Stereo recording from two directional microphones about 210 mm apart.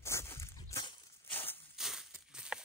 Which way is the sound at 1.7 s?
Centre (ahead or behind).